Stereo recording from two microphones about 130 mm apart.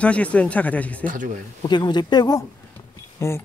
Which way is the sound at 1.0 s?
90° right.